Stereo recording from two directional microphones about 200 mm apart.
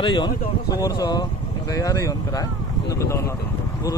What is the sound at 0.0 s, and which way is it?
Speech, 25° left (ahead or behind).